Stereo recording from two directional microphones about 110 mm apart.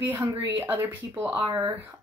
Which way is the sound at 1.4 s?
35° right (ahead or behind).